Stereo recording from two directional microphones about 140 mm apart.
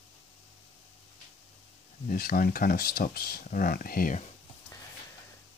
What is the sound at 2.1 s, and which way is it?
Speech, 90° left.